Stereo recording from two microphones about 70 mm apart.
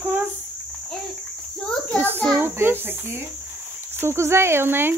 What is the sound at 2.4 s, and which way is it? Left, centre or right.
Cricket, right.